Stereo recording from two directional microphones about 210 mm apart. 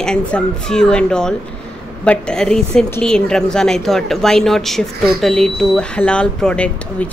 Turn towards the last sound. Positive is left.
turn(degrees=5)  # may be behind; listen again after turning